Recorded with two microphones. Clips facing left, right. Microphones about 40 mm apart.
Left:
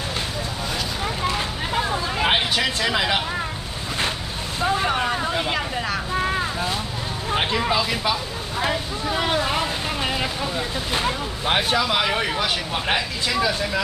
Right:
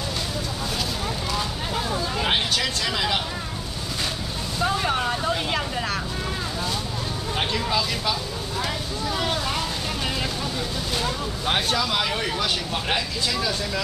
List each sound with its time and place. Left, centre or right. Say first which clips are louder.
1.0 s vehicle: left 3 dB; left
4.6 s boat: left 3 dB; centre
6.1 s vehicle: left 6 dB; left
7.2 s speech: left 5 dB; left
8.5 s vehicle: left 5 dB; left
11.5 s speech: left 4 dB; centre